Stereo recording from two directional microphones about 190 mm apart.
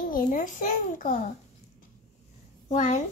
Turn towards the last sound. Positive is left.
turn(degrees=40)  # may be behind; listen again after turning